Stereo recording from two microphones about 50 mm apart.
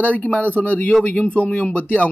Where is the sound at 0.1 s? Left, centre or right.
Left.